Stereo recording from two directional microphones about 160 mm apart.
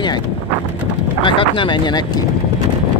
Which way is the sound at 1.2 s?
30° left (ahead or behind).